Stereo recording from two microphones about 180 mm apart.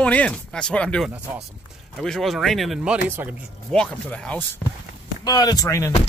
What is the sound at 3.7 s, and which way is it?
Speech, 5° left (ahead or behind).